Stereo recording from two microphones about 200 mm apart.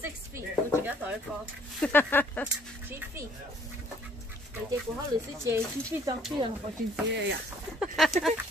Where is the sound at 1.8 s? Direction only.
10° left (ahead or behind).